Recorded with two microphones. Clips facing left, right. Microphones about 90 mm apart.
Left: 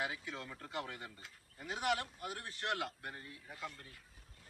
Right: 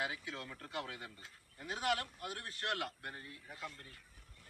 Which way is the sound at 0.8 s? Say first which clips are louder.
Even; centre (ahead or behind).